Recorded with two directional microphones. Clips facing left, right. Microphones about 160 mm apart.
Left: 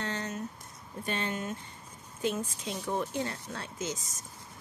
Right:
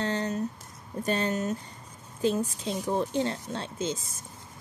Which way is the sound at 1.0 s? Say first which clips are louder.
Right 6 dB; 40° right (ahead or behind).